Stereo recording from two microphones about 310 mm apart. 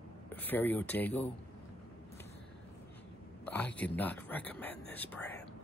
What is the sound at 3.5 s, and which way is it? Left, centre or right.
Speech, centre.